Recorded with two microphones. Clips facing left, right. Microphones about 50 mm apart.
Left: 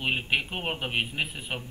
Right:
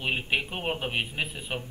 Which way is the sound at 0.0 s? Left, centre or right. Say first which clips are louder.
Left 1 dB; centre.